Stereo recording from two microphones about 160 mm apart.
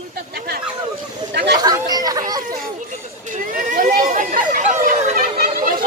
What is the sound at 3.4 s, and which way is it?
Chatter, 55° right (ahead or behind).